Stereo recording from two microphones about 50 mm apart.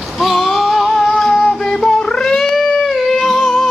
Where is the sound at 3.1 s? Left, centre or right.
Centre.